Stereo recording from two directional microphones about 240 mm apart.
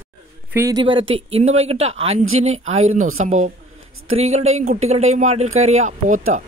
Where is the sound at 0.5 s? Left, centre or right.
Centre; by 6.2 s right.